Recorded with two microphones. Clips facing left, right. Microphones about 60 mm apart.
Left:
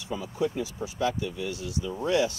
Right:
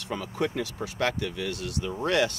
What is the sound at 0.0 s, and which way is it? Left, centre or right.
Speech, right.